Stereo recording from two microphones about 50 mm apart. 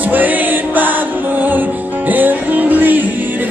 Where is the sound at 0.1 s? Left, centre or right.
Right.